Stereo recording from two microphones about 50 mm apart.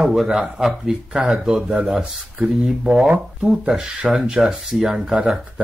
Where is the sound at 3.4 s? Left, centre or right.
Centre.